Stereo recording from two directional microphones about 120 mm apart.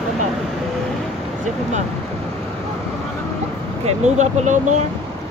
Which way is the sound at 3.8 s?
70° right (ahead or behind).